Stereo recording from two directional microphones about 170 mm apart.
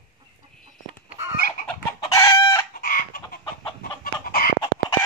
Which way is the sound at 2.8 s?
55° left (ahead or behind).